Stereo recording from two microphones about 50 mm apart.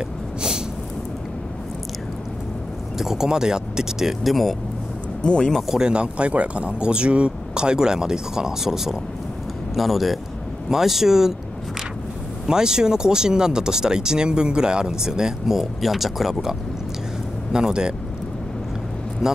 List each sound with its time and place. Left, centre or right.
3.0 s speech: centre
4.2 s speech: centre
5.2 s speech: centre
5.5 s speech: centre
5.8 s speech: centre
12.4 s speech: centre
19.2 s speech: centre